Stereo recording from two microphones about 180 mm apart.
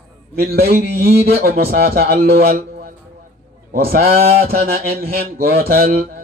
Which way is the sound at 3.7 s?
55° right (ahead or behind).